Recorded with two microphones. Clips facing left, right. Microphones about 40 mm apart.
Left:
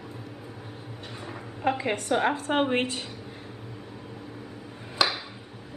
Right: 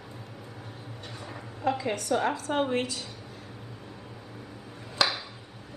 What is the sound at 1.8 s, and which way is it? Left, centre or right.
A woman's voice, left.